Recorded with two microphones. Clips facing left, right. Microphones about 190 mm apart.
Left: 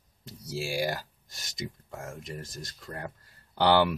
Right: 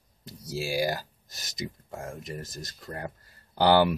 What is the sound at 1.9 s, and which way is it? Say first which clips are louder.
Speech: right 2 dB; 35° right (ahead or behind).